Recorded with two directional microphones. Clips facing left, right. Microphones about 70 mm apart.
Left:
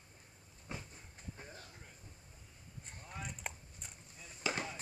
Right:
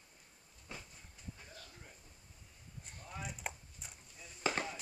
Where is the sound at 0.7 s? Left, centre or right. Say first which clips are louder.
Left 3 dB; left.